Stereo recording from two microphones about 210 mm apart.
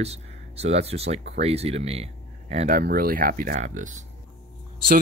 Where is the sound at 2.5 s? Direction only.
40° right (ahead or behind).